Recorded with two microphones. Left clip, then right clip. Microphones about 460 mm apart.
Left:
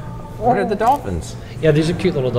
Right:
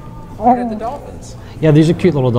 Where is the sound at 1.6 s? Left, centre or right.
Right.